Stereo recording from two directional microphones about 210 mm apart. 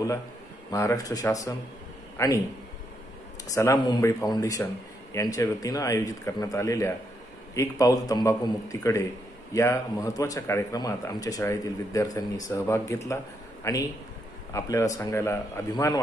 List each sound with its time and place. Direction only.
0.7 s a man's voice: 15° left (ahead or behind)
3.4 s speech: 15° left (ahead or behind)